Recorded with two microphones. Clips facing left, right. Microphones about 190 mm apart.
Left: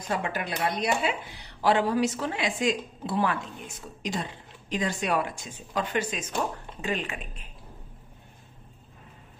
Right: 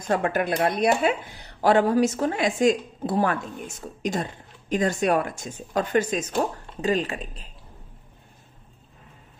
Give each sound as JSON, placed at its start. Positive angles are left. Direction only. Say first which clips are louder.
{"t": 0.1, "sound": "a woman's voice", "louder": "right 7 dB", "side_deg": -50}